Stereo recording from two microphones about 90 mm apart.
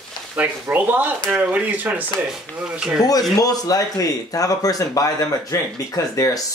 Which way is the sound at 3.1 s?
45° left (ahead or behind).